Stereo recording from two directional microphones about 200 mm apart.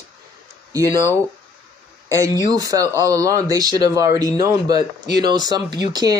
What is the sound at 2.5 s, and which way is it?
Speech, 20° right (ahead or behind).